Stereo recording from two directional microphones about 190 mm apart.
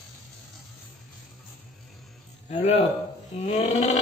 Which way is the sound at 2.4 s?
35° left (ahead or behind).